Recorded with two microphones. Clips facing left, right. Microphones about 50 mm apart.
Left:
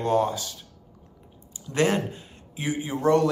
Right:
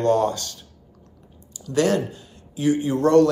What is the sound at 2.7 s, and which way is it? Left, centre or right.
Speech, centre.